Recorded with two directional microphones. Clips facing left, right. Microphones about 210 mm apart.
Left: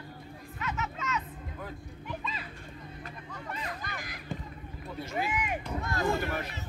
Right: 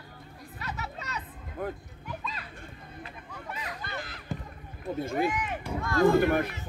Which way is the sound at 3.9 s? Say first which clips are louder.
Right 3 dB; 15° left (ahead or behind).